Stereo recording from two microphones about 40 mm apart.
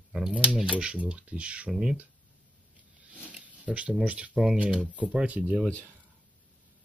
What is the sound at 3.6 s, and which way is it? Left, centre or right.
Speech, right.